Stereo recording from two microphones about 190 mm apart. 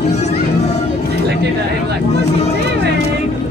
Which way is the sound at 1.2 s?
60° right (ahead or behind).